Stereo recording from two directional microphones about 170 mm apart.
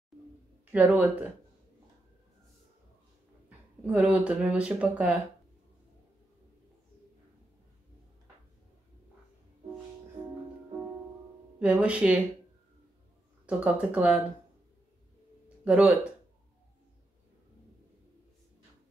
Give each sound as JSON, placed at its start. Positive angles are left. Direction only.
{"t": 0.7, "sound": "speech", "side_deg": -10}
{"t": 3.4, "sound": "speech", "side_deg": -10}
{"t": 11.6, "sound": "speech", "side_deg": -10}
{"t": 13.5, "sound": "speech", "side_deg": -5}
{"t": 15.4, "sound": "a sound", "side_deg": -5}